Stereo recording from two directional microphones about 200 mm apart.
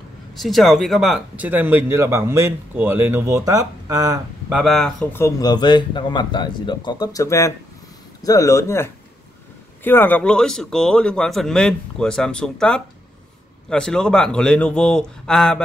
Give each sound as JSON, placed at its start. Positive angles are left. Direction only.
{"t": 0.4, "sound": "speech", "side_deg": 0}
{"t": 4.5, "sound": "speech", "side_deg": -5}
{"t": 5.2, "sound": "speech", "side_deg": 20}